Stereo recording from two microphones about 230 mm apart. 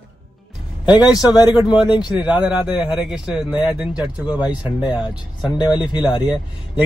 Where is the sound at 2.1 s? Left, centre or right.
Centre.